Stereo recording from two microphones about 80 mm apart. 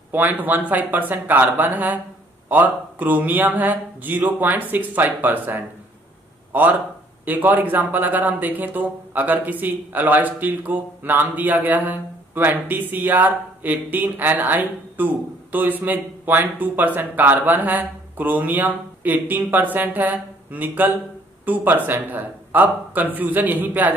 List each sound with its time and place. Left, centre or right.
0.1 s a man's voice: right